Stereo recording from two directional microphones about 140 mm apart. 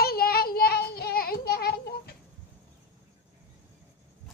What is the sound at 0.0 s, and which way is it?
Child singing, 90° left.